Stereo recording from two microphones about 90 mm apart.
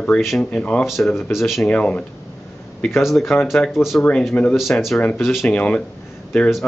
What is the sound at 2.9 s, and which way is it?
Speech, centre (ahead or behind).